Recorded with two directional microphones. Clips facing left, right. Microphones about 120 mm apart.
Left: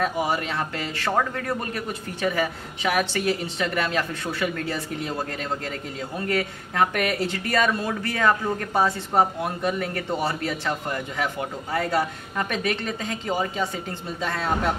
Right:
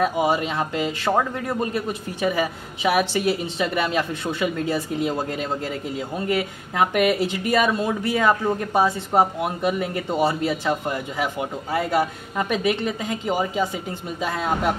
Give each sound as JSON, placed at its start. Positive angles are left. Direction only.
{"t": 0.0, "sound": "speech", "side_deg": -20}
{"t": 6.1, "sound": "speech", "side_deg": -15}